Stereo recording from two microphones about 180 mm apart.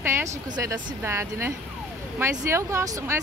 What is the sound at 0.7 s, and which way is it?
Speech, 15° right (ahead or behind).